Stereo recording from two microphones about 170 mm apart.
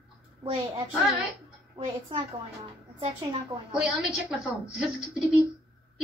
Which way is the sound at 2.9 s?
35° right (ahead or behind).